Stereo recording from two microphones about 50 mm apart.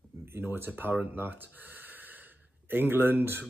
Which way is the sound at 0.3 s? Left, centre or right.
Right.